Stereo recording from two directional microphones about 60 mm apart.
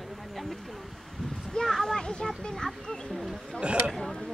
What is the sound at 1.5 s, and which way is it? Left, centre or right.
A child's voice, centre.